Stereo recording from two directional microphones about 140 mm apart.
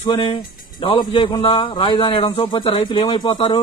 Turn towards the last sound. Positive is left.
turn(degrees=40)  # may be behind; listen again after turning